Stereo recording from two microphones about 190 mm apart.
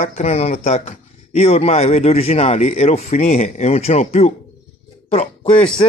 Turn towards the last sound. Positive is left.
turn(degrees=30)  # may be behind; listen again after turning